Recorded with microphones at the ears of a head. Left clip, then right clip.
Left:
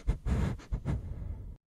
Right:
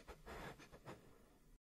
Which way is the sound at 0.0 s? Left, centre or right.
Left.